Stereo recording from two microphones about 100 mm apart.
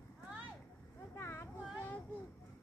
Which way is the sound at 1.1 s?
25° left (ahead or behind).